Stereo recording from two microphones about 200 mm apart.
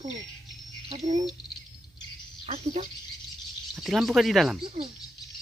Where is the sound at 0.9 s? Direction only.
35° right (ahead or behind).